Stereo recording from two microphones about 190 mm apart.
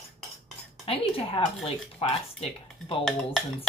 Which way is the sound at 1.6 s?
30° left (ahead or behind).